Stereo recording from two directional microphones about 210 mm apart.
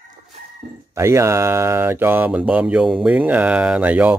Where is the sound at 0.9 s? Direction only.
15° right (ahead or behind).